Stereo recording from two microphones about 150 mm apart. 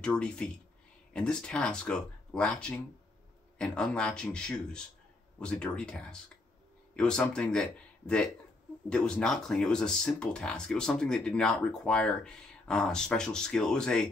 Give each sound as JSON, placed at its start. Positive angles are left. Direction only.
{"t": 0.0, "sound": "speech", "side_deg": 5}
{"t": 8.8, "sound": "speech", "side_deg": 5}